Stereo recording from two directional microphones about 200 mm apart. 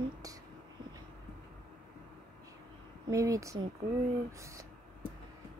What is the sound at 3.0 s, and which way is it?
Speech, 15° right (ahead or behind).